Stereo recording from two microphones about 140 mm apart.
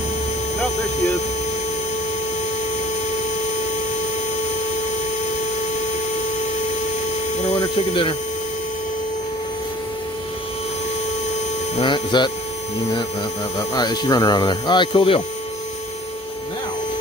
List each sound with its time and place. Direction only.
7.9 s speech: 40° left (ahead or behind)
11.8 s mains hum: 35° left (ahead or behind)
13.6 s speech: 30° left (ahead or behind)